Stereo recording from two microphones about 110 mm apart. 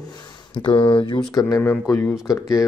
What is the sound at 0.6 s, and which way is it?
Speech, 50° left (ahead or behind).